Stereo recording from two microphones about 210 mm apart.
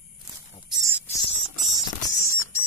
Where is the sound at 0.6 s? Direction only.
20° right (ahead or behind).